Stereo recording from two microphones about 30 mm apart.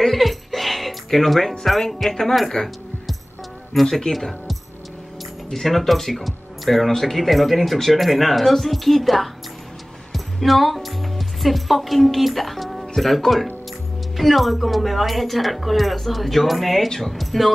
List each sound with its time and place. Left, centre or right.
0.0 s music: centre
1.6 s speech: centre
2.0 s a woman's voice: centre
3.8 s speech: centre
5.5 s speech: centre